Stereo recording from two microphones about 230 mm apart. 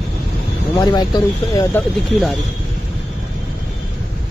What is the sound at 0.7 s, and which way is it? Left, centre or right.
Speech, centre.